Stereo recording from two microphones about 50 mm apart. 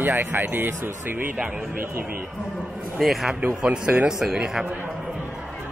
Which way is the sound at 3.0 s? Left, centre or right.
Centre.